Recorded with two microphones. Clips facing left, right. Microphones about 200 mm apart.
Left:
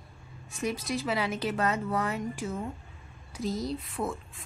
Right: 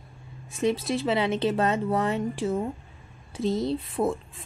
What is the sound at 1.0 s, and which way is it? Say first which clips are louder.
A woman's voice: right 7 dB; 25° right (ahead or behind).